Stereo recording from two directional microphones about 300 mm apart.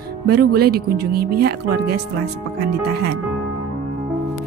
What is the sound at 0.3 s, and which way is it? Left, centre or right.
Speech, right.